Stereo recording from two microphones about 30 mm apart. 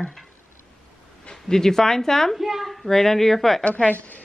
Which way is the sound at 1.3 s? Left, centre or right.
Centre.